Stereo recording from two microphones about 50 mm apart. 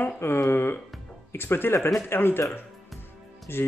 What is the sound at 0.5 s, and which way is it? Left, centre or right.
Music, left.